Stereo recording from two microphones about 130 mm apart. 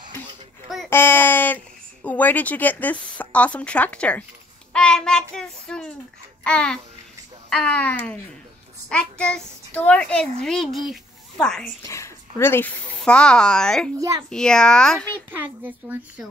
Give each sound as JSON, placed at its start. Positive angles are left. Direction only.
{"t": 0.8, "sound": "a sound", "side_deg": 15}
{"t": 2.0, "sound": "speech", "side_deg": 10}
{"t": 4.7, "sound": "child singing", "side_deg": 5}
{"t": 5.3, "sound": "a child's voice", "side_deg": 5}
{"t": 11.8, "sound": "speech", "side_deg": 20}
{"t": 13.9, "sound": "a child's voice", "side_deg": -25}
{"t": 14.3, "sound": "a child's voice", "side_deg": 5}
{"t": 15.3, "sound": "speech", "side_deg": -15}